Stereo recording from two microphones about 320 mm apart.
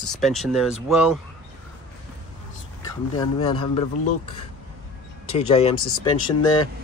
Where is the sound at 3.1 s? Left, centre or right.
Centre.